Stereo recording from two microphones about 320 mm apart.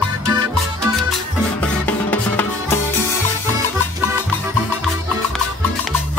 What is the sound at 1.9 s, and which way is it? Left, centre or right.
Music, centre.